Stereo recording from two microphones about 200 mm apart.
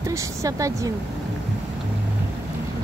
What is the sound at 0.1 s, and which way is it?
Speech, 15° right (ahead or behind).